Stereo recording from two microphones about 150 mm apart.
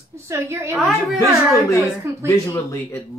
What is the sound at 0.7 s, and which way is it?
Speech, centre (ahead or behind).